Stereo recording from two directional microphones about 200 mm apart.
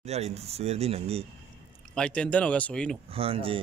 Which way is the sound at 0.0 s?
30° right (ahead or behind).